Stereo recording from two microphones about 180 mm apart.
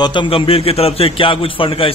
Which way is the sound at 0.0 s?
25° left (ahead or behind).